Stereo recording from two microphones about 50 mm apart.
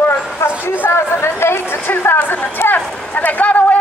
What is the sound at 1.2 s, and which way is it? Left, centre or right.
Chatter, left.